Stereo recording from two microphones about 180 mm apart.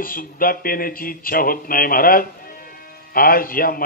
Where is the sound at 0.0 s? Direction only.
50° left (ahead or behind).